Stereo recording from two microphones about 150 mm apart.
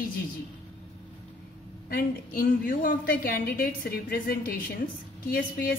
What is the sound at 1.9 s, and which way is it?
A woman's voice, 75° left (ahead or behind).